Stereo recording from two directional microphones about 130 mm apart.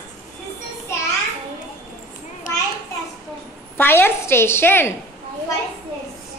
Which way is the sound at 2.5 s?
90° left.